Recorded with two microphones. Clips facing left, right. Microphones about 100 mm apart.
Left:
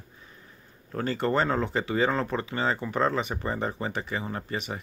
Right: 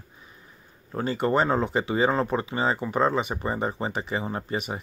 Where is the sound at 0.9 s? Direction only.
15° right (ahead or behind).